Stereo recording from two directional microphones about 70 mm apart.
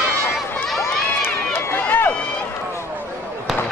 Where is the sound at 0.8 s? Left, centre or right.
Left.